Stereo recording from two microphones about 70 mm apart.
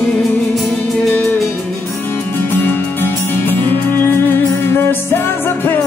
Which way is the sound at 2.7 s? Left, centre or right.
Left.